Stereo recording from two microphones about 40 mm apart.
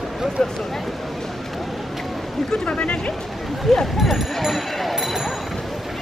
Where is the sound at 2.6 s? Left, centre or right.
Left.